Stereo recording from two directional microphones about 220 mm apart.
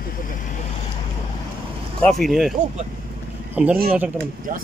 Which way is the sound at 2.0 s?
Centre (ahead or behind).